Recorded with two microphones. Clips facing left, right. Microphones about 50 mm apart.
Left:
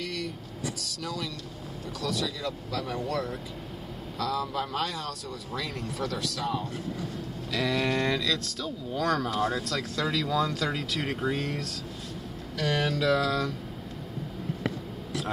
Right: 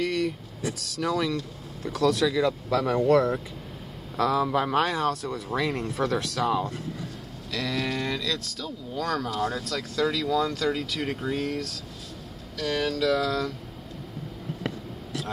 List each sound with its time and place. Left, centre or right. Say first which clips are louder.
0.0 s speech: right 8 dB; right
4.2 s speech: right 7 dB; right
7.5 s speech: left 2 dB; centre
12.5 s speech: even; left
12.9 s a sound: right 2 dB; centre